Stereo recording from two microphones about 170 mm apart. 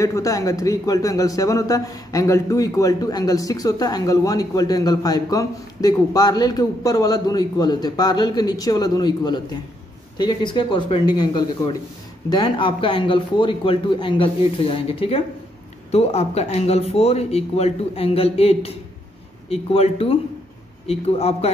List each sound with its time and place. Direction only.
0.0 s a man's voice: 20° left (ahead or behind); by 21.5 s 35° left (ahead or behind)